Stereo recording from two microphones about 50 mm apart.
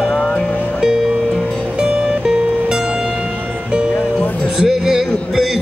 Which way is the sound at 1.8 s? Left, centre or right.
Centre.